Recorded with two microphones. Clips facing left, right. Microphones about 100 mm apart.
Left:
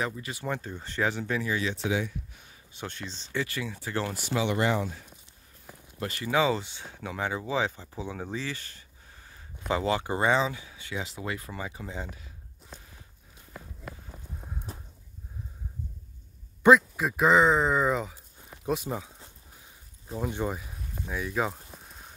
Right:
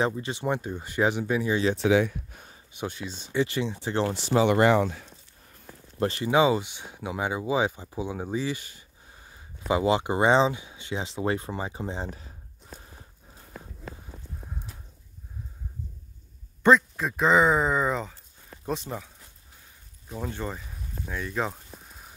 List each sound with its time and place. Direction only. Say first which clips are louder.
0.0 s speech: right 6 dB; 25° right (ahead or behind)
1.8 s speech: right 8 dB; 70° right (ahead or behind)
2.7 s speech: right 5 dB; 10° right (ahead or behind); by 4.5 s 30° right (ahead or behind)
4.5 s speech: right 7 dB; 60° right (ahead or behind)
5.9 s speech: right 5 dB; 30° right (ahead or behind)
16.6 s speech: left 1 dB; 5° left (ahead or behind)
20.2 s a sound: left 3 dB; 15° left (ahead or behind)